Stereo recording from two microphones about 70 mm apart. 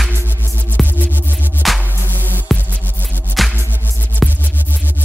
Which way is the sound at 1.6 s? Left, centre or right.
Centre.